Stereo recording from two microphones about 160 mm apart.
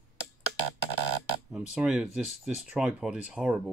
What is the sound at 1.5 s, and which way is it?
Speech, 5° right (ahead or behind).